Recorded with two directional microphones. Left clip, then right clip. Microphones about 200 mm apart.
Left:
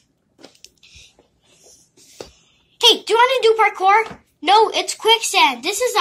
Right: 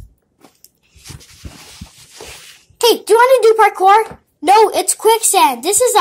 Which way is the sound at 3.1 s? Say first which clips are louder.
Right 5 dB; 25° right (ahead or behind).